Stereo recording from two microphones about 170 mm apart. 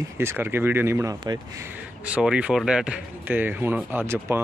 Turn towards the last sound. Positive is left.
turn(degrees=-15)  # may be behind; listen again after turning